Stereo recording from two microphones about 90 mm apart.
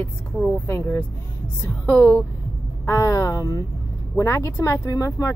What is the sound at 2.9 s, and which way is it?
Speech, 35° left (ahead or behind).